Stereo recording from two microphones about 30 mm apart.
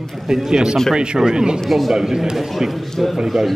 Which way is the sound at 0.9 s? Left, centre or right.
Right.